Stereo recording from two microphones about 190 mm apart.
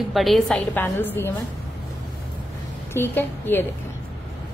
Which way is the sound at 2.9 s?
10° left (ahead or behind).